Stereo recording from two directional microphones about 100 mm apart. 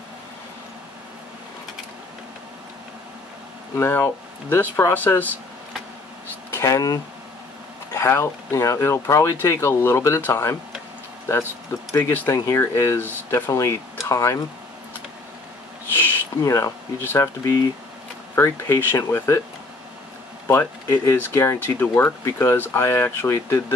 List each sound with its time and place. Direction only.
3.7 s speech: 25° left (ahead or behind)
6.5 s speech: 30° left (ahead or behind)
12.1 s speech: 25° left (ahead or behind)
16.0 s speech: 30° left (ahead or behind)
18.3 s speech: 30° left (ahead or behind)
20.4 s speech: 25° left (ahead or behind)